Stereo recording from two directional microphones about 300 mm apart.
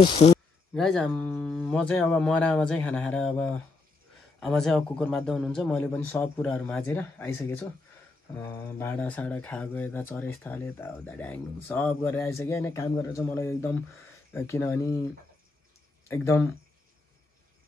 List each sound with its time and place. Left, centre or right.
0.0 s speech: centre
0.7 s speech: centre
16.1 s speech: centre